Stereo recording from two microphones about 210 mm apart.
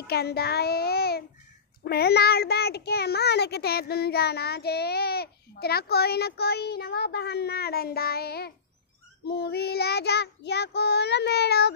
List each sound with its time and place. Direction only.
0.0 s a child's voice: 50° left (ahead or behind)